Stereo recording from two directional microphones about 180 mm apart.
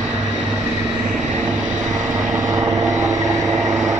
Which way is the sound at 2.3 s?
20° right (ahead or behind).